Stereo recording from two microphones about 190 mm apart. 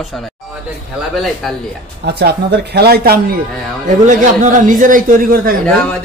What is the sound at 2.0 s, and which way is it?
Speech, 60° right (ahead or behind).